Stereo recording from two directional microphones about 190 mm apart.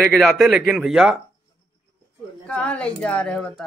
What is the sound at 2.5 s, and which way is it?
Speech, 5° left (ahead or behind).